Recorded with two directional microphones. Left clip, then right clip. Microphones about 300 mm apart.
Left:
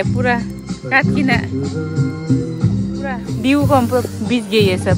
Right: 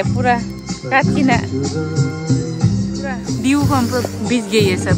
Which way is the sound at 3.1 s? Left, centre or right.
Centre.